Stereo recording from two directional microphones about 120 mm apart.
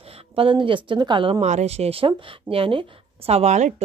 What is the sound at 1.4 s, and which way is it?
A woman's voice, 70° right (ahead or behind).